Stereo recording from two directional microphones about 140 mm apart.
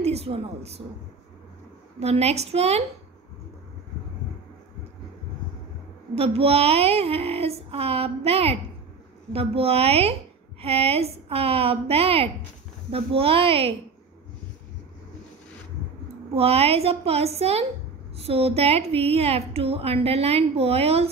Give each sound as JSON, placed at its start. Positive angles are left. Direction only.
{"t": 0.0, "sound": "a woman's voice", "side_deg": -45}
{"t": 2.0, "sound": "a woman's voice", "side_deg": -50}
{"t": 6.1, "sound": "a woman's voice", "side_deg": -45}
{"t": 16.3, "sound": "a woman's voice", "side_deg": -45}